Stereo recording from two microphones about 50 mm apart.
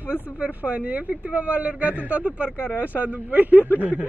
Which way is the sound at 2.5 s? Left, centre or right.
Left.